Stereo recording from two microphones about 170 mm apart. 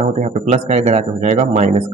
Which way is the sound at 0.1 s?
45° right (ahead or behind).